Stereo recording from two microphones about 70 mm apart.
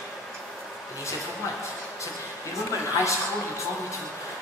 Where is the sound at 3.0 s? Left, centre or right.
Left.